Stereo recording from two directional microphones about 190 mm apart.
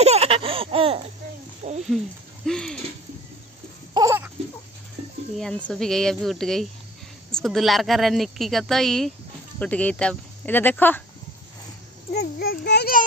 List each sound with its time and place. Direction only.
0.0 s laughter: 35° right (ahead or behind)
1.6 s speech: 35° right (ahead or behind)
2.4 s a sound: 5° left (ahead or behind)
3.9 s baby cry: 15° right (ahead or behind)
5.4 s a woman's voice: 5° left (ahead or behind)
12.2 s a child's voice: 60° left (ahead or behind)